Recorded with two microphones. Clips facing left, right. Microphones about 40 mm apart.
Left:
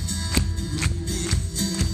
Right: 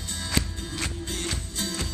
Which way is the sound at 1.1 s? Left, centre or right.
Right.